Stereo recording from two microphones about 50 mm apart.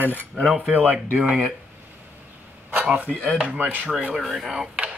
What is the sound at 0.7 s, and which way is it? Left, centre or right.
Speech, right.